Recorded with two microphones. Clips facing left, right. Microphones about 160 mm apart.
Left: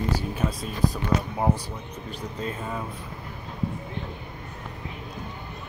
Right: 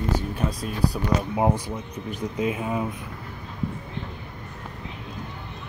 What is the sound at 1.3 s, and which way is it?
Speech, 15° right (ahead or behind).